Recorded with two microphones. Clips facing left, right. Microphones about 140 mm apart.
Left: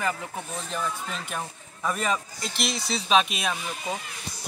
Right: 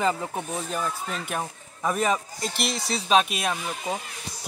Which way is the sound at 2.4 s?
45° right (ahead or behind).